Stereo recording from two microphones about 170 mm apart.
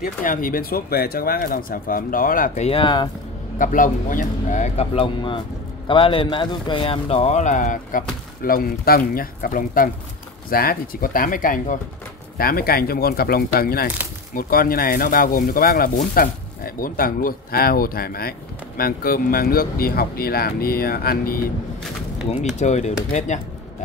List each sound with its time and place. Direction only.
0.0 s speech: 55° left (ahead or behind); by 3.1 s 30° left (ahead or behind)
3.5 s speech: 50° left (ahead or behind)
22.6 s speech: 45° left (ahead or behind)